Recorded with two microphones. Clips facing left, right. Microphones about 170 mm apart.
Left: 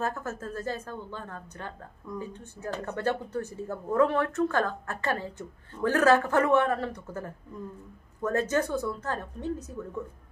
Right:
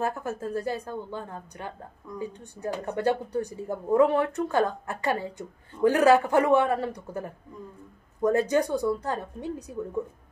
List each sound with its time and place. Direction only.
0.0 s speech: 15° right (ahead or behind)